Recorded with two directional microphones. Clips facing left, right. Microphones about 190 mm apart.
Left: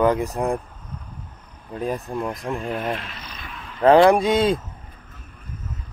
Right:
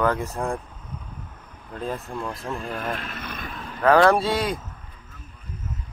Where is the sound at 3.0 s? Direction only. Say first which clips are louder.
Right 4 dB; 55° right (ahead or behind).